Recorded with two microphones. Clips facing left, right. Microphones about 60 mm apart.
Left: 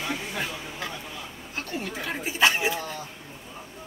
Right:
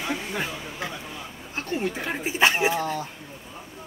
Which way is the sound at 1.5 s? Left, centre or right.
Right.